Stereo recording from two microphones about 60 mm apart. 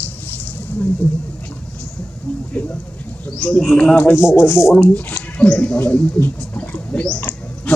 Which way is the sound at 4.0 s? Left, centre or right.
Left.